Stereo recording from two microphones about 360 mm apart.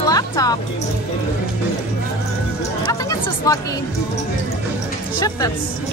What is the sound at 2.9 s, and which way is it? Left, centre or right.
Chatter, centre.